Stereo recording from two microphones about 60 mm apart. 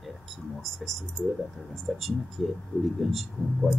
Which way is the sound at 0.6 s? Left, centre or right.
Centre.